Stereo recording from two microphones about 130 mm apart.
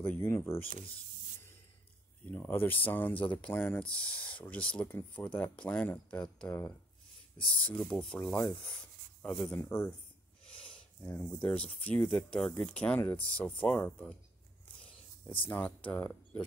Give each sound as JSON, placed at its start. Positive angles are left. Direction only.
{"t": 0.2, "sound": "speech", "side_deg": 20}
{"t": 2.2, "sound": "speech", "side_deg": 15}
{"t": 7.4, "sound": "speech", "side_deg": 10}
{"t": 10.4, "sound": "a sound", "side_deg": 5}
{"t": 11.0, "sound": "speech", "side_deg": 15}
{"t": 15.2, "sound": "speech", "side_deg": 40}
{"t": 15.5, "sound": "speech", "side_deg": 10}